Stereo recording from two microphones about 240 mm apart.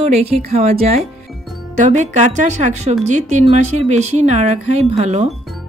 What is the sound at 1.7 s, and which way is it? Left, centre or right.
A woman's voice, right.